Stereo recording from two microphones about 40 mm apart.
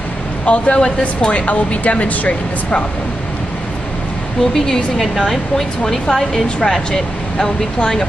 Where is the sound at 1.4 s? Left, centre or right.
Left.